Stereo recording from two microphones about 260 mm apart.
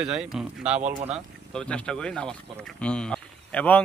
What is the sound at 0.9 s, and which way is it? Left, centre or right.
Speech, right.